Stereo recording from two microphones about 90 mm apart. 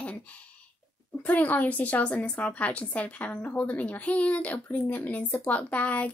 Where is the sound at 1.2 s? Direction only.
20° left (ahead or behind).